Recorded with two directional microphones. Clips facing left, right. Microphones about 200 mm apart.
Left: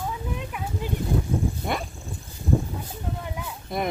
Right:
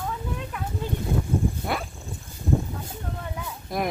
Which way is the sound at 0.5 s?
10° left (ahead or behind).